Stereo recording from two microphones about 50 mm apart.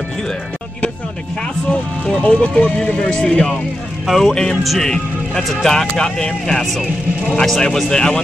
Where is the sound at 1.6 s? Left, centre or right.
Centre.